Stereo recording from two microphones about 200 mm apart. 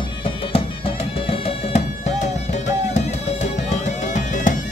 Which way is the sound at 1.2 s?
30° left (ahead or behind).